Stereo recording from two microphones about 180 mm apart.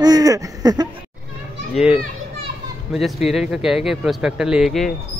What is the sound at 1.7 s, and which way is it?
Speech, 5° right (ahead or behind).